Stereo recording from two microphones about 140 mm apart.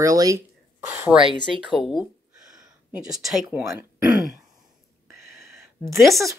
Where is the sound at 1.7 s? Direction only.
Centre (ahead or behind).